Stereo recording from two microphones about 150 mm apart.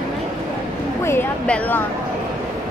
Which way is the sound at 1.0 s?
15° left (ahead or behind).